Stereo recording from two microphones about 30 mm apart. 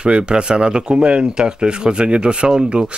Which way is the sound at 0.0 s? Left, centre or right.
Right.